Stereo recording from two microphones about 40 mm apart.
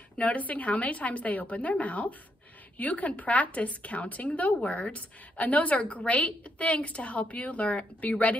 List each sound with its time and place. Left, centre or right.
0.2 s a woman's voice: left